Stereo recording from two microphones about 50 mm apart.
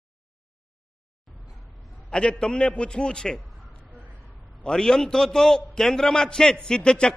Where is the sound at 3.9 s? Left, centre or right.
Right.